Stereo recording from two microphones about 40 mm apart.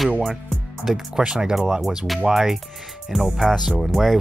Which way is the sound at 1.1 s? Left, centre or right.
Centre.